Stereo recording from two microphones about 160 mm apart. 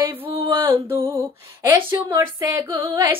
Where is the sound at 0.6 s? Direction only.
15° right (ahead or behind).